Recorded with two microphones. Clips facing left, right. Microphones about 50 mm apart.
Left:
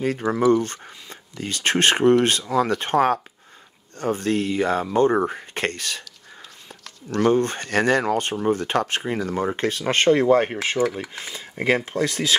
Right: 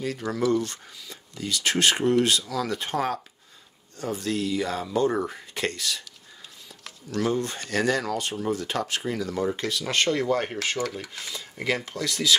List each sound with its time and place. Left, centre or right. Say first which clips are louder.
0.0 s speech: left 6 dB; left
7.2 s speech: left 9 dB; left